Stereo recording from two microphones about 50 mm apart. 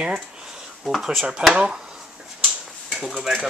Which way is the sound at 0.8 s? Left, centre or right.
Centre.